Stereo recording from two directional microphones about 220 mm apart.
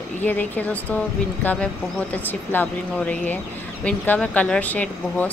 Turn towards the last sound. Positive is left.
turn(degrees=5)  # may be behind; listen again after turning